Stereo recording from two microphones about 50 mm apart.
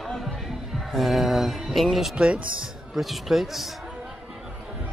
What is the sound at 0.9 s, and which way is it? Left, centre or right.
Speech, centre.